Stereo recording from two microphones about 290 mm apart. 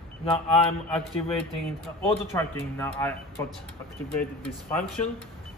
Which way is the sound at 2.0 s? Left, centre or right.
Centre.